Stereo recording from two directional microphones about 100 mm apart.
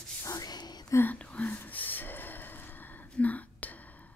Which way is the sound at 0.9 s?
15° left (ahead or behind).